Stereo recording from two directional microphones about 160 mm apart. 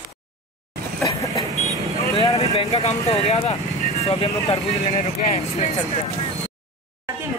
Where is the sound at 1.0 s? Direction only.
20° left (ahead or behind).